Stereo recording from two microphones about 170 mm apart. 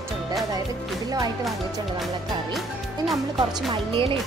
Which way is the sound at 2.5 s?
Centre (ahead or behind).